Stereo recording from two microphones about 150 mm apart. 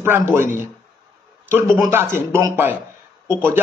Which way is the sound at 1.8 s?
15° right (ahead or behind).